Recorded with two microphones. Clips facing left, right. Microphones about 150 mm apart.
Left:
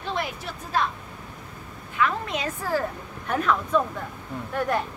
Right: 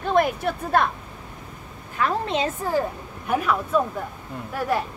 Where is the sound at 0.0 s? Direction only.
50° right (ahead or behind).